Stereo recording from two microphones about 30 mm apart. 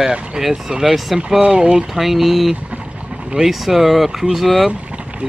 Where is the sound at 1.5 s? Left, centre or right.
Right.